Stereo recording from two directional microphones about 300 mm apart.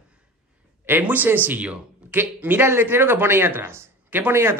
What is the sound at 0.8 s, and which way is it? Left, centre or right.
A man's voice, centre.